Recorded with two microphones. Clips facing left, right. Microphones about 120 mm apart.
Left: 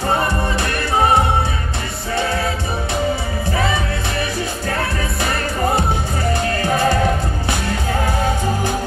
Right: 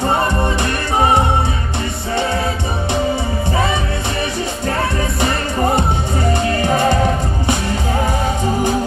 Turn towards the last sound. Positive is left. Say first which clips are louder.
# right 2 dB
turn(degrees=-20)  # may be behind; listen again after turning